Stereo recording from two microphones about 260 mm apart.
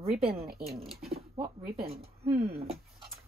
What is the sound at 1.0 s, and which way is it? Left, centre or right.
Speech, right.